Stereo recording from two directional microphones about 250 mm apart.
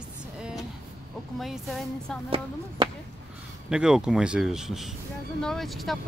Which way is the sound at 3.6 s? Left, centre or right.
Centre.